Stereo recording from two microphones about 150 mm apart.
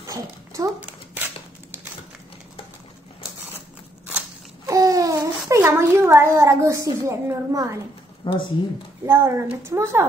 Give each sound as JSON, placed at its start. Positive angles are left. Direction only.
{"t": 0.0, "sound": "dog", "side_deg": -20}
{"t": 0.7, "sound": "dog", "side_deg": -10}
{"t": 4.6, "sound": "babbling", "side_deg": -20}
{"t": 8.2, "sound": "speech", "side_deg": 30}
{"t": 9.0, "sound": "speech", "side_deg": -15}